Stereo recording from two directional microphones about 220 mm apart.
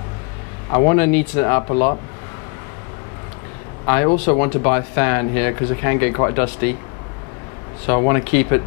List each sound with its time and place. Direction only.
0.7 s speech: 15° left (ahead or behind)
3.8 s a man's voice: 15° left (ahead or behind)
7.8 s speech: 20° left (ahead or behind)